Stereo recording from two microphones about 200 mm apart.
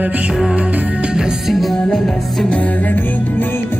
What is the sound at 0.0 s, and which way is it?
Music, 5° right (ahead or behind).